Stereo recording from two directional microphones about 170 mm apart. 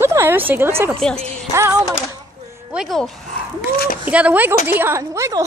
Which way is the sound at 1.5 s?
15° right (ahead or behind).